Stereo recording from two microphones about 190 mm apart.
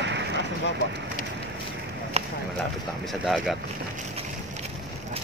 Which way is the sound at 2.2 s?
35° right (ahead or behind).